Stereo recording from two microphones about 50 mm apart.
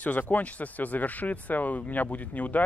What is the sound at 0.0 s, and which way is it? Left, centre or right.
Speech, left.